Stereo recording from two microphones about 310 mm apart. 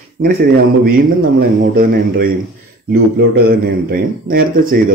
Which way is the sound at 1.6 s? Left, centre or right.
Right.